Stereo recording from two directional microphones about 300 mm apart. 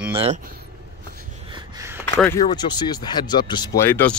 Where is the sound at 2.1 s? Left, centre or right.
Centre.